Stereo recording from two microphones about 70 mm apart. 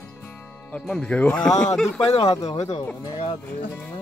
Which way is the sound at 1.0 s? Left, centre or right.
Centre.